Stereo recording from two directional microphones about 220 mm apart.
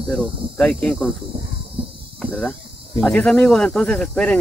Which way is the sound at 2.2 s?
5° left (ahead or behind).